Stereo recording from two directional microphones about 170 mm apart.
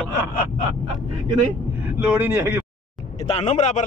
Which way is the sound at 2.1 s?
10° right (ahead or behind).